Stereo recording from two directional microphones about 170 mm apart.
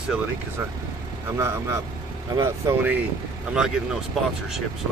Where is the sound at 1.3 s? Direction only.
15° right (ahead or behind).